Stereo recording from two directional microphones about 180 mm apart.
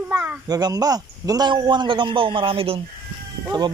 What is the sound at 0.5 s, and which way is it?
A man's voice, 20° right (ahead or behind).